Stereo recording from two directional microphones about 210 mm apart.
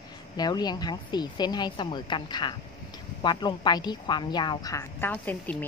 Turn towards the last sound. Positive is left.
turn(degrees=10)  # may be behind; listen again after turning